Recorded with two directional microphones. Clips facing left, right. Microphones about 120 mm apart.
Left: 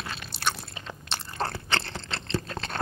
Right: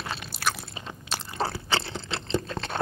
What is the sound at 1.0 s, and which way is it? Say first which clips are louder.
Crunch: right 2 dB; 5° right (ahead or behind).